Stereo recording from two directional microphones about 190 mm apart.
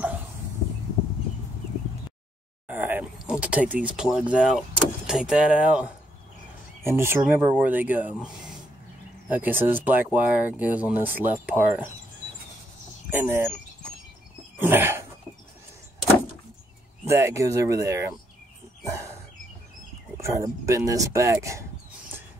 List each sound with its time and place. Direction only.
2.7 s speech: 10° right (ahead or behind)
9.3 s speech: 10° right (ahead or behind)
13.1 s speech: 10° right (ahead or behind)
14.6 s a sound: 10° right (ahead or behind)
17.1 s speech: 15° right (ahead or behind)
20.2 s speech: 15° right (ahead or behind)